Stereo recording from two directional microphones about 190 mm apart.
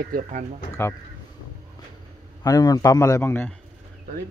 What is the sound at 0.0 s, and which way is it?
Speech, 45° right (ahead or behind).